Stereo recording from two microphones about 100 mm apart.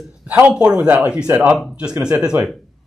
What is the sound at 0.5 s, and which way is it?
Speech, 5° right (ahead or behind).